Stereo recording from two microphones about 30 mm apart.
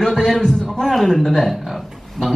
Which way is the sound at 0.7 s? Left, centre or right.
Centre.